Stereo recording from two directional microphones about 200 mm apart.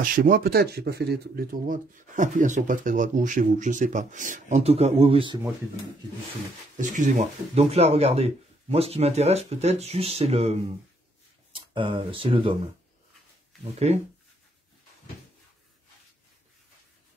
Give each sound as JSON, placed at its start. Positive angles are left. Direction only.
{"t": 0.0, "sound": "speech", "side_deg": -45}
{"t": 6.8, "sound": "speech", "side_deg": -40}
{"t": 13.7, "sound": "speech", "side_deg": -30}